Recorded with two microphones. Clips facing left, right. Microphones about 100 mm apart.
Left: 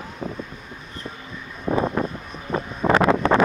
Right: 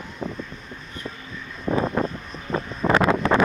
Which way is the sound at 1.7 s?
20° left (ahead or behind).